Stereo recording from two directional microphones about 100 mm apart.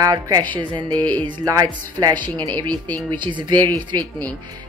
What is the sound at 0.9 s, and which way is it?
Music, 15° left (ahead or behind).